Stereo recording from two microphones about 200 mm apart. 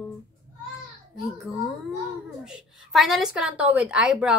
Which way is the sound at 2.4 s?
5° right (ahead or behind).